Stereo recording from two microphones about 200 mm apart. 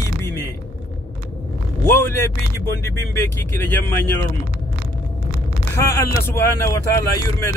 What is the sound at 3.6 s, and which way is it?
Speech, 10° left (ahead or behind).